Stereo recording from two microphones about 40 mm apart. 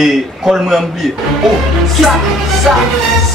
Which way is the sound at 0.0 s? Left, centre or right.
Centre.